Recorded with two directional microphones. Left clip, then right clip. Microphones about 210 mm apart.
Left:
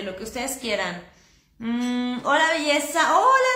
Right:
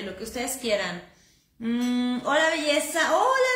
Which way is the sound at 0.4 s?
15° left (ahead or behind).